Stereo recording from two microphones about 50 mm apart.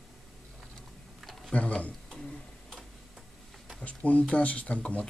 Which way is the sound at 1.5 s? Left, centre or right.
Left.